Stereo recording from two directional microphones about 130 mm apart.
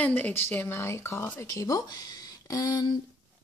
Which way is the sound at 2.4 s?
30° left (ahead or behind).